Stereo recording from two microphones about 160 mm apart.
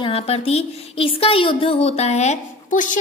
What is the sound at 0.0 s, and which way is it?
A woman's voice, 40° left (ahead or behind).